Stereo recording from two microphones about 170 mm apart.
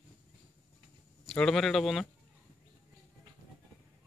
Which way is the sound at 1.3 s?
5° left (ahead or behind).